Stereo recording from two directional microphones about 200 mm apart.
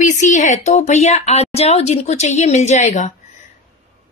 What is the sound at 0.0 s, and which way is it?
Speech, 40° left (ahead or behind).